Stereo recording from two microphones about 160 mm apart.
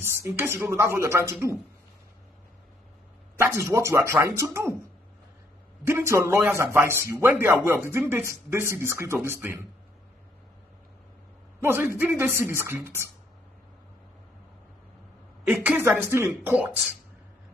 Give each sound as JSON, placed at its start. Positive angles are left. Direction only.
{"t": 0.0, "sound": "a man's voice", "side_deg": -15}
{"t": 3.3, "sound": "a man's voice", "side_deg": -15}
{"t": 5.9, "sound": "a man's voice", "side_deg": -15}
{"t": 11.6, "sound": "a man's voice", "side_deg": -15}
{"t": 15.4, "sound": "a man's voice", "side_deg": -10}